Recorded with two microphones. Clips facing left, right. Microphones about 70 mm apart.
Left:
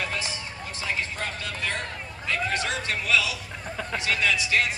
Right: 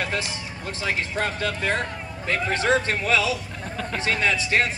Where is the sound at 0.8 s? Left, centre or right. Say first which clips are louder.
Right 5 dB; right.